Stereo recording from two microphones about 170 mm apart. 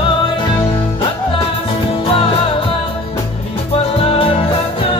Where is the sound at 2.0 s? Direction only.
30° left (ahead or behind).